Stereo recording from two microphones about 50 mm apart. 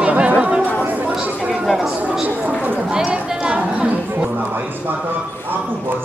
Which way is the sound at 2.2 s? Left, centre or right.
Right.